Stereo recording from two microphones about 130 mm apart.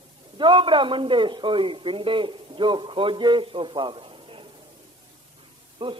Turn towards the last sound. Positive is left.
turn(degrees=-40)  # may be behind; listen again after turning